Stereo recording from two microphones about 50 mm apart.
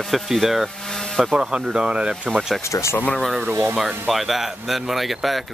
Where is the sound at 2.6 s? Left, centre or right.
Left.